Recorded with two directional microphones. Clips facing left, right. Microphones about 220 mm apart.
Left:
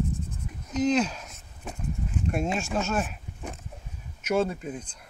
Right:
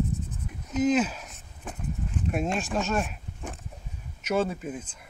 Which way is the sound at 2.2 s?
Centre (ahead or behind).